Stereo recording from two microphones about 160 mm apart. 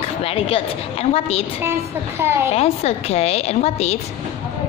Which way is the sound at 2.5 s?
40° left (ahead or behind).